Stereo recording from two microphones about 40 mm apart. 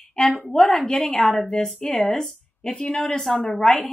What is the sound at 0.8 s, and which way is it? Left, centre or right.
Speech, centre.